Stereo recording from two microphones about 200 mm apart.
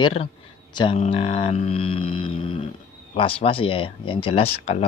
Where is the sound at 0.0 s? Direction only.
30° left (ahead or behind).